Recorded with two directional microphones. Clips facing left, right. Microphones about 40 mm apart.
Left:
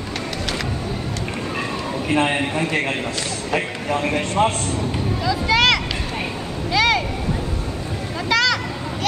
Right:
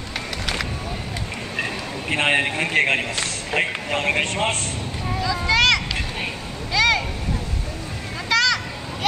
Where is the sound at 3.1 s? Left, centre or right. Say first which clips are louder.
Even; right.